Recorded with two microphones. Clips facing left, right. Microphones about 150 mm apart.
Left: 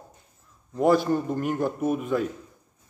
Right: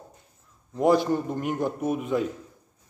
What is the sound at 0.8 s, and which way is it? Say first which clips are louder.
A man's voice: even; 15° right (ahead or behind).